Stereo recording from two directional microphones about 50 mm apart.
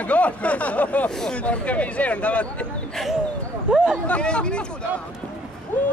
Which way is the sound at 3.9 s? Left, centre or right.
Left.